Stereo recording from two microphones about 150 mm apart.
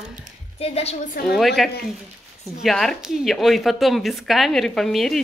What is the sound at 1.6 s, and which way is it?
A woman's voice, centre (ahead or behind).